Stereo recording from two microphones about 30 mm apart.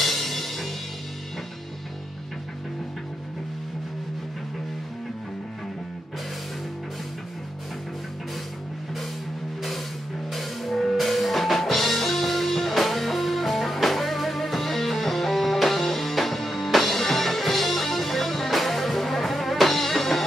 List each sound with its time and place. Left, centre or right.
0.0 s music: centre
10.3 s music: centre